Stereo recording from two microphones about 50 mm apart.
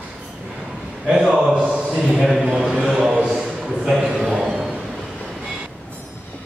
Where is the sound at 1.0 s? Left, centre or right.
Centre.